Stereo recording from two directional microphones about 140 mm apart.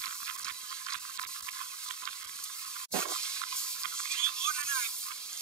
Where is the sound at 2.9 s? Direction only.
5° left (ahead or behind).